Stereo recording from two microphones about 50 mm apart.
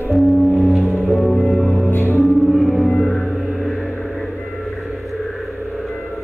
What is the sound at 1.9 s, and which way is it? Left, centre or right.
Music, left.